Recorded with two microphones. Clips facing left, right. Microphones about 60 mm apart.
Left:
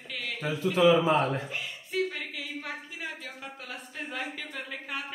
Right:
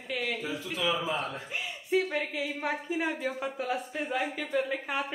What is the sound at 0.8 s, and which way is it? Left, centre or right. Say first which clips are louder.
Speech: left 9 dB; left.